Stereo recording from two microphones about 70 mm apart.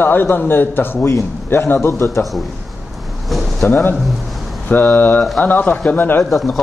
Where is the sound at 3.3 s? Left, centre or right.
Centre.